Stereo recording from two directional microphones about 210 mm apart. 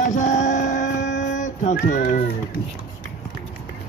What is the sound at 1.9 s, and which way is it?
Speech, 35° left (ahead or behind).